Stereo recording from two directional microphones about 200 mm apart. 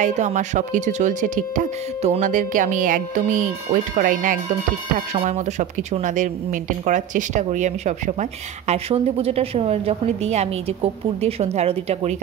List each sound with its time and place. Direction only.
0.0 s speech: 35° right (ahead or behind)